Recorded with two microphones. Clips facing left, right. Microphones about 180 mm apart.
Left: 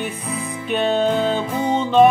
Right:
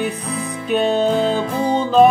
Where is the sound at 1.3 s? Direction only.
35° right (ahead or behind).